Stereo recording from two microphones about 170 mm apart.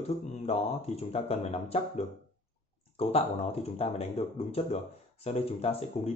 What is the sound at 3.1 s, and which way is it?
Speech, 35° left (ahead or behind).